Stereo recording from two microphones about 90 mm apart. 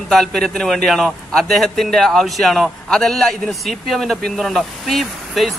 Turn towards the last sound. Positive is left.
turn(degrees=0)  # may be behind; listen again after turning